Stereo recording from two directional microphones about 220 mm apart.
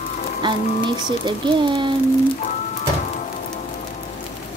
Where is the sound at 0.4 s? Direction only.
20° right (ahead or behind).